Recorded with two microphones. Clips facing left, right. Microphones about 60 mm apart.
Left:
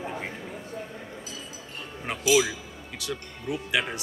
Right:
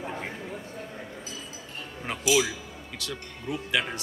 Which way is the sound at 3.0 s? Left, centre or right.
Centre.